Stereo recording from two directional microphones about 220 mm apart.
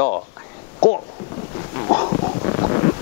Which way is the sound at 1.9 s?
25° left (ahead or behind).